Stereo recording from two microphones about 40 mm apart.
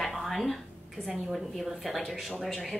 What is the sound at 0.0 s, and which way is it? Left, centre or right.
Music, centre.